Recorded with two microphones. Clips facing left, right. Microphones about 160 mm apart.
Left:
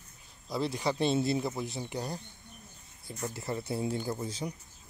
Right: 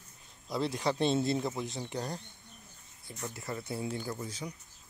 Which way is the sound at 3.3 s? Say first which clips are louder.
Left 3 dB; 30° left (ahead or behind).